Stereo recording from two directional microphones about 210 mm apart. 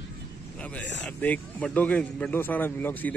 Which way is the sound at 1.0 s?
5° left (ahead or behind).